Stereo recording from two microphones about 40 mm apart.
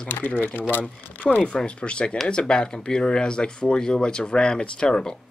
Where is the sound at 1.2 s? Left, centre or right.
Left.